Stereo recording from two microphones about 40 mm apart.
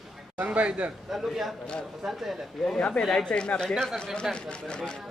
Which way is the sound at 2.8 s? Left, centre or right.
Left.